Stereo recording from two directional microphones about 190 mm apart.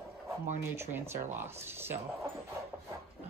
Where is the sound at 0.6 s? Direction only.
15° right (ahead or behind).